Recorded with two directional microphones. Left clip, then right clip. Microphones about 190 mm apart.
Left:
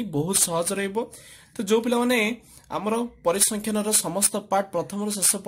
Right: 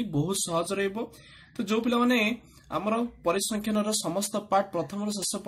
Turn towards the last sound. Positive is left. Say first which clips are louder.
# left 4 dB
turn(degrees=30)  # may be behind; listen again after turning